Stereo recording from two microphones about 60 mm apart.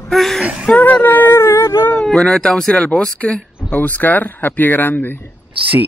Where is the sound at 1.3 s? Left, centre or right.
Left.